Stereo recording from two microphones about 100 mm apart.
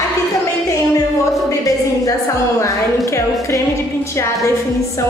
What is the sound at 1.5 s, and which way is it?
Speech, 35° left (ahead or behind).